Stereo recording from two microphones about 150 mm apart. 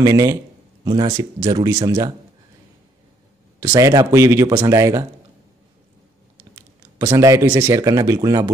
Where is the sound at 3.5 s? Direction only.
20° right (ahead or behind).